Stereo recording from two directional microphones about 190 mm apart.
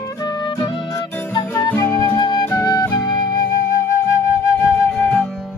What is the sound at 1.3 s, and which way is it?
Music, 20° left (ahead or behind).